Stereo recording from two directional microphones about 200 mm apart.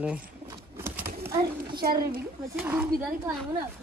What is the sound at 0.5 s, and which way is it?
Bird, 10° right (ahead or behind).